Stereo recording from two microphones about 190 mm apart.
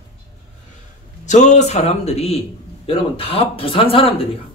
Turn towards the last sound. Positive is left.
turn(degrees=30)  # may be behind; listen again after turning